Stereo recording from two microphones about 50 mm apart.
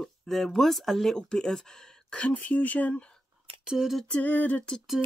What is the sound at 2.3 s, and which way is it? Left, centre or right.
Speech, left.